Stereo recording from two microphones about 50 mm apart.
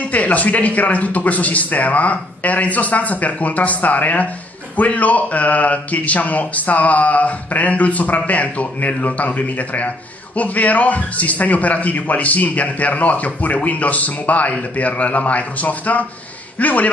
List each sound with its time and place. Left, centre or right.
0.1 s a man's voice: left